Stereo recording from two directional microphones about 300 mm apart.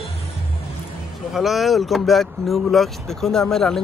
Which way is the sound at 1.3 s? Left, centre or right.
Centre.